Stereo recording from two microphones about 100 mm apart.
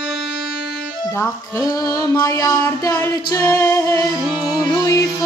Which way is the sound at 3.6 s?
35° left (ahead or behind).